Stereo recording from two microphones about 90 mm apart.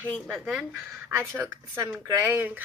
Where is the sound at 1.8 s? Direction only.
25° right (ahead or behind).